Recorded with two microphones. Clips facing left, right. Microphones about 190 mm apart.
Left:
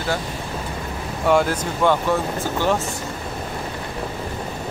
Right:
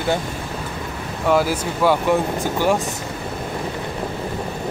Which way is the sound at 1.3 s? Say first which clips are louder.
Even; 5° right (ahead or behind).